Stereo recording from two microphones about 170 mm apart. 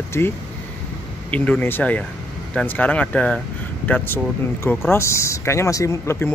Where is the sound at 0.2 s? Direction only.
15° left (ahead or behind).